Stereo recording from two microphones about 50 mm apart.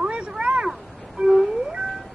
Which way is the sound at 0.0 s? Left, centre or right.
Centre.